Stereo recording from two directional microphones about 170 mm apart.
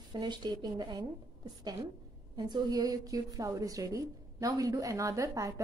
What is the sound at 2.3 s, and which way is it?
A woman's voice, 25° right (ahead or behind).